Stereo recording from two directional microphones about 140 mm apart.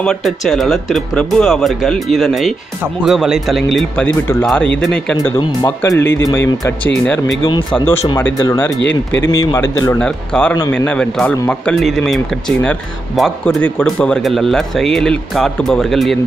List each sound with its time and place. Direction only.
0.0 s speech: 5° left (ahead or behind)
4.0 s speech: 10° left (ahead or behind)
5.8 s speech: 15° left (ahead or behind)
6.8 s speech: 5° left (ahead or behind)
8.4 s a man's voice: 25° left (ahead or behind)
9.9 s speech: 5° left (ahead or behind)